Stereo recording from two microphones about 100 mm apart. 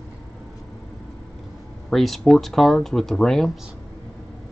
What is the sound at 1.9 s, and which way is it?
Speech, centre (ahead or behind).